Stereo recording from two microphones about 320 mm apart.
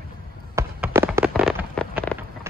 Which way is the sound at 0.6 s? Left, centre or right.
Centre.